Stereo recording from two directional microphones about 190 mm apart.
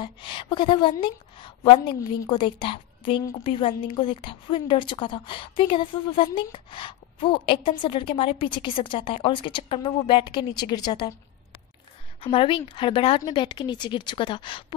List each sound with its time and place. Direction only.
0.0 s a woman's voice: 25° left (ahead or behind)
12.2 s a woman's voice: 30° left (ahead or behind)